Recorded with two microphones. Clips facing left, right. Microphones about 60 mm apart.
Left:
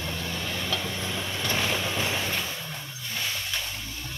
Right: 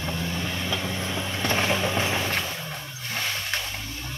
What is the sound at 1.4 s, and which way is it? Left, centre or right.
Vehicle, right.